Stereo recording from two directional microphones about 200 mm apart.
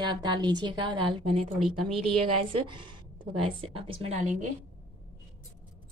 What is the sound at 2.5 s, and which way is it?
A woman's voice, 25° right (ahead or behind).